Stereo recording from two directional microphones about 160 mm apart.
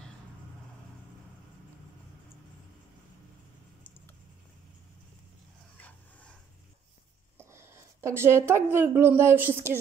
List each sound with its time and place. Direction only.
7.3 s a woman's voice: 15° right (ahead or behind)